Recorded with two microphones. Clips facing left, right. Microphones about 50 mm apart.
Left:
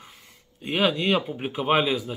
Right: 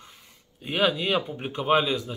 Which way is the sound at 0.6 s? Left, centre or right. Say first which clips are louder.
Left 1 dB; centre.